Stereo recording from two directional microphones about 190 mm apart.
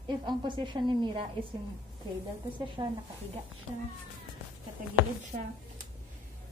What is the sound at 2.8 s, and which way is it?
Speech, 30° right (ahead or behind).